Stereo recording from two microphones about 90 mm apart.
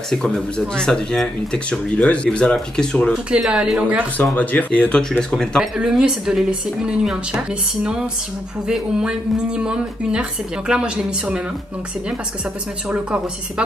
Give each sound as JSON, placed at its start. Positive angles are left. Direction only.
{"t": 0.1, "sound": "speech", "side_deg": 5}
{"t": 3.3, "sound": "speech", "side_deg": -10}
{"t": 4.2, "sound": "speech", "side_deg": 15}
{"t": 5.6, "sound": "speech", "side_deg": -5}